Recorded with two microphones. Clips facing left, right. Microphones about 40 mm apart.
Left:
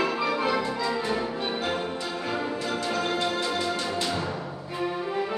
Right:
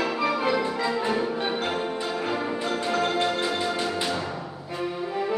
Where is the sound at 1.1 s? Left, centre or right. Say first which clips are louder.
Right 3 dB; centre.